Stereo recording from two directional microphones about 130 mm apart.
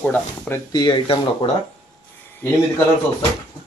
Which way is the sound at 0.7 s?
35° left (ahead or behind).